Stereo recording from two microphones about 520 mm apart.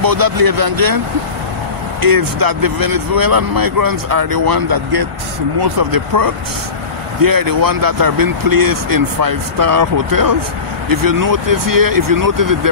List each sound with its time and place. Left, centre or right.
0.0 s speech: right